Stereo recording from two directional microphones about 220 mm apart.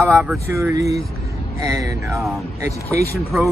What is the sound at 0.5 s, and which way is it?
Speech, 15° right (ahead or behind).